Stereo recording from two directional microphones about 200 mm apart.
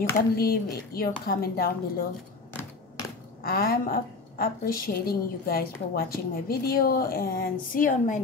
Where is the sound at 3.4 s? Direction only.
50° left (ahead or behind).